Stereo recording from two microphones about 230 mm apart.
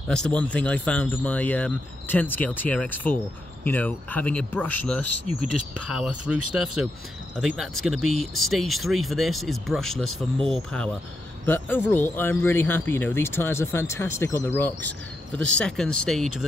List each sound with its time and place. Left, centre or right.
0.1 s speech: centre
5.0 s speech: right
5.9 s speech: centre